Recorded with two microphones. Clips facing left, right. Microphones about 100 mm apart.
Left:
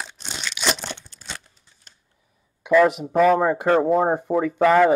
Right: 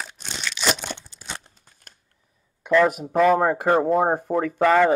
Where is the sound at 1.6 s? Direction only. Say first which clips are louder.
Right 3 dB; 50° right (ahead or behind).